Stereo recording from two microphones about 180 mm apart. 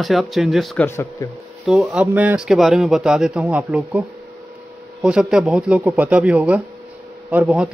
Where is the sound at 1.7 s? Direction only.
Centre (ahead or behind).